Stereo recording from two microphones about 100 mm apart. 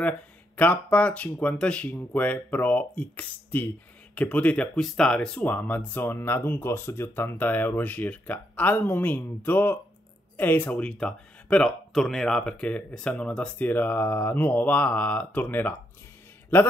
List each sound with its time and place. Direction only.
0.0 s speech: 15° left (ahead or behind)